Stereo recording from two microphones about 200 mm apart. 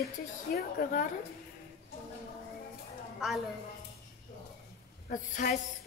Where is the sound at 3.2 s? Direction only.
Centre (ahead or behind).